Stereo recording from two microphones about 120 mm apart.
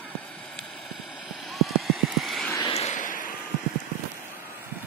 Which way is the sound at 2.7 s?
75° left (ahead or behind).